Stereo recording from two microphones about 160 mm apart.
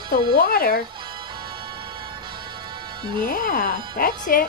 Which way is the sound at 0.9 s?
30° right (ahead or behind).